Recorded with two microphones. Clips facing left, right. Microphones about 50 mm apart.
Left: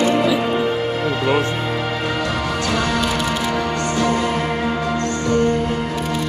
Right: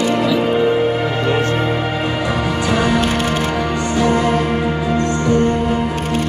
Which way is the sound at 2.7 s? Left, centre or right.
Centre.